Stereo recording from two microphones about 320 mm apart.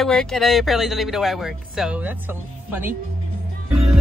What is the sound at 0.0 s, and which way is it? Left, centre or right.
Speech, centre.